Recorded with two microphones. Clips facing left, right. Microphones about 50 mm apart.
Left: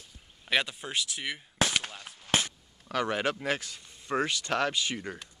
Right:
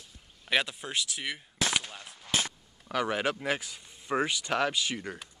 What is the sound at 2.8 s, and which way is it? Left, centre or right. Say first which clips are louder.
Speech: even; centre.